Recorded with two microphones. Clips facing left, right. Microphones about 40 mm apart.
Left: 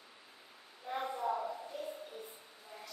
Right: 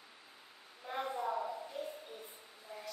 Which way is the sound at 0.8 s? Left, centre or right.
Centre.